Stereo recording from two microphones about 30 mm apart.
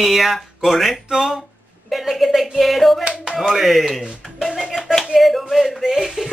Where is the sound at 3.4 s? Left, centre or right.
Centre.